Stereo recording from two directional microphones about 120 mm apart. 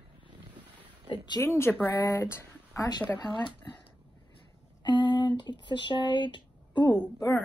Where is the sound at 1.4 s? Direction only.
20° left (ahead or behind).